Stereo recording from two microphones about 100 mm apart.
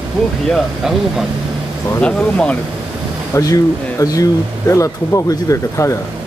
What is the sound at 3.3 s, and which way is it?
Speech, 35° left (ahead or behind).